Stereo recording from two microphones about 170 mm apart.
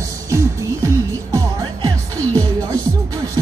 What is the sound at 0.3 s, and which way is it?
Music, 15° right (ahead or behind).